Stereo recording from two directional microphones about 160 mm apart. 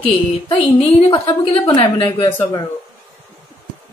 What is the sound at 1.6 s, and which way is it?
Speech, 30° left (ahead or behind).